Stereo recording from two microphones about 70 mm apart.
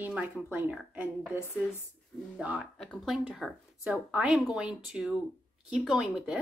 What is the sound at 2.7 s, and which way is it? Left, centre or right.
Speech, centre.